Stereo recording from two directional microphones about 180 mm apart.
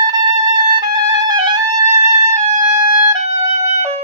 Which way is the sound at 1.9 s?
35° right (ahead or behind).